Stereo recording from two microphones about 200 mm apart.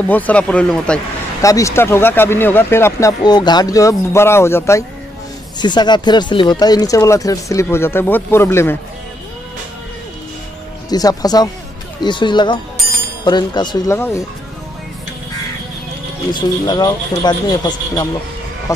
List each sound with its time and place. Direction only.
0.1 s speech: 5° left (ahead or behind)
1.4 s speech: 15° left (ahead or behind)
10.9 s speech: 20° left (ahead or behind)
13.9 s speech: 10° left (ahead or behind)
16.3 s speech: 20° left (ahead or behind)